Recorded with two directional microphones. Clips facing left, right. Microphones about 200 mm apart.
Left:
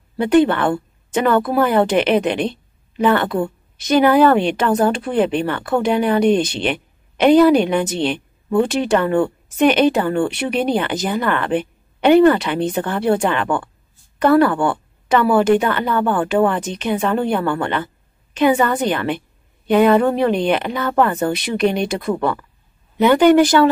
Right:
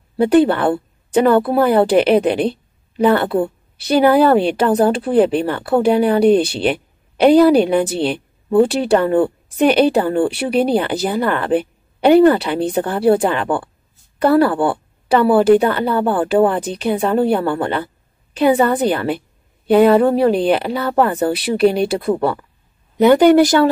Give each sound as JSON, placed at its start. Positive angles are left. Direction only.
{"t": 0.2, "sound": "a woman's voice", "side_deg": -35}